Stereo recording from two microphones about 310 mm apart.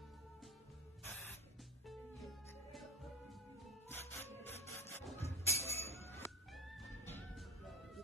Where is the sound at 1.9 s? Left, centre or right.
Centre.